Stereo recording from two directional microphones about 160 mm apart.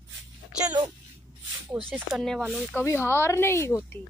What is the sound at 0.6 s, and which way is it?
Speech, 25° right (ahead or behind).